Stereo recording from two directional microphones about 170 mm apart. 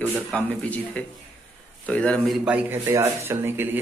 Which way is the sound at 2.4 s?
10° right (ahead or behind).